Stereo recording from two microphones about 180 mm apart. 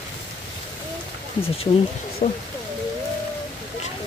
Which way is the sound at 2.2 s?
45° left (ahead or behind).